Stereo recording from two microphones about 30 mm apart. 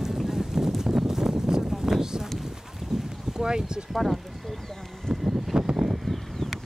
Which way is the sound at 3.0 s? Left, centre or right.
Centre.